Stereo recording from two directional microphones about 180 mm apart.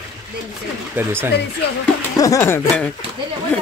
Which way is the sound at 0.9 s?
10° right (ahead or behind).